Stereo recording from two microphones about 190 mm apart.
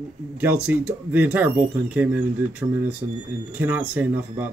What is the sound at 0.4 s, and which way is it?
Speech, 10° right (ahead or behind).